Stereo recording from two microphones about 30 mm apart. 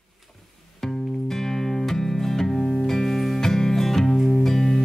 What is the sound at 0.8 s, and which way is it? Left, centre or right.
Music, centre.